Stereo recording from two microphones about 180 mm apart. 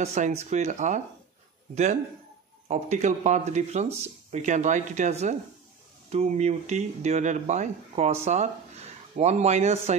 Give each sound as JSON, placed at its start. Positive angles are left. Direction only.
{"t": 0.0, "sound": "speech", "side_deg": -40}
{"t": 2.7, "sound": "speech", "side_deg": -40}